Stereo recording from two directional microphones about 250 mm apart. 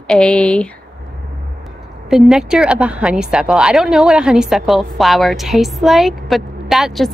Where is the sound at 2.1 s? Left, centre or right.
Centre.